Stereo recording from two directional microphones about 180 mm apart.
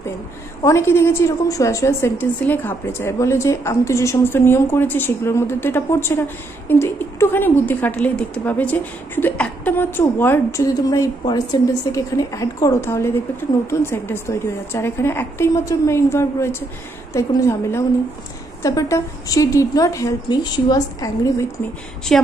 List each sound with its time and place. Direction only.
0.6 s a woman's voice: 15° left (ahead or behind)
22.1 s a woman's voice: 5° left (ahead or behind)